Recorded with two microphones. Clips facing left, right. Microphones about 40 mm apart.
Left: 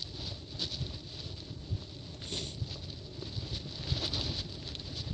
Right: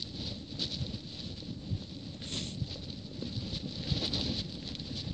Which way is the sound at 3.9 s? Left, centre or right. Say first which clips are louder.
Right 1 dB; centre.